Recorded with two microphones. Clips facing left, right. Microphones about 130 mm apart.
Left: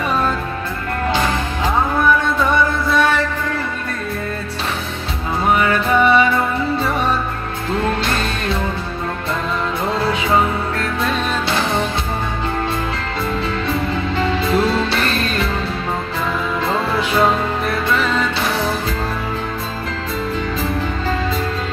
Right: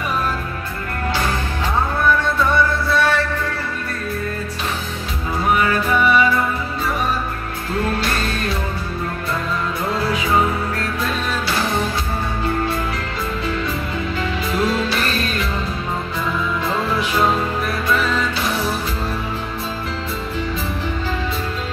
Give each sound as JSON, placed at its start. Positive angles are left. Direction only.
{"t": 2.5, "sound": "music", "side_deg": 15}
{"t": 5.6, "sound": "music", "side_deg": 25}
{"t": 8.0, "sound": "music", "side_deg": 25}
{"t": 9.9, "sound": "music", "side_deg": 25}
{"t": 14.1, "sound": "music", "side_deg": 30}